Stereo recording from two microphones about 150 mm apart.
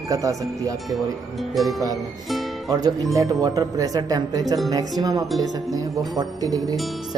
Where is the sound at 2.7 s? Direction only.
25° right (ahead or behind).